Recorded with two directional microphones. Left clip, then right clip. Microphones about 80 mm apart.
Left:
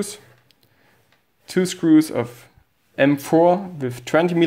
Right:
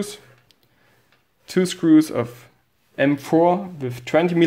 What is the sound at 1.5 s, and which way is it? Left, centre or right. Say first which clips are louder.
Speech: even; centre.